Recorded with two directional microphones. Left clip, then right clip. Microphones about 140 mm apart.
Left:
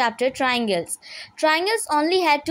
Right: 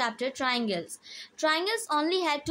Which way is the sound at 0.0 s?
35° left (ahead or behind).